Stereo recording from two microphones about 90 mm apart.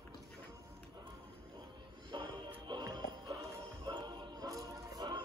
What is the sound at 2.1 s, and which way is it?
Music, 55° right (ahead or behind).